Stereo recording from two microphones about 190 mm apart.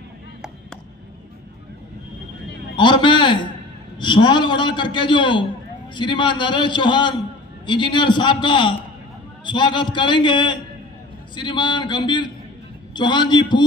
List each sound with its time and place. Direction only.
2.7 s a man's voice: 25° left (ahead or behind)